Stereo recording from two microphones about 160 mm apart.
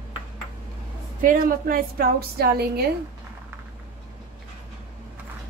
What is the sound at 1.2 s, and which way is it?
A woman's voice, 60° right (ahead or behind).